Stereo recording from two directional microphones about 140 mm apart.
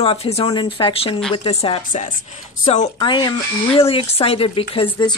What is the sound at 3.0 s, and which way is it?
Speech, 35° left (ahead or behind).